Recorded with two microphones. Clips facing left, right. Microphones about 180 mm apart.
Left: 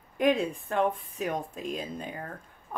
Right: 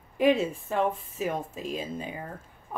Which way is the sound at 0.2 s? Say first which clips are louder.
Right 2 dB; 5° right (ahead or behind).